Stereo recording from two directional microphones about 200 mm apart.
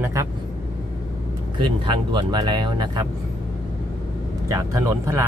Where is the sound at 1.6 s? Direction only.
25° right (ahead or behind).